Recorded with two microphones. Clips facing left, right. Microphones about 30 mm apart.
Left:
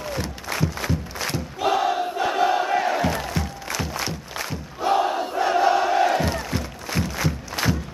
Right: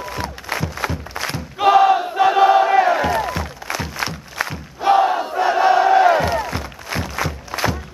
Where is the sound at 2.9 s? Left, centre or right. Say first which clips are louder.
Right 5 dB; centre.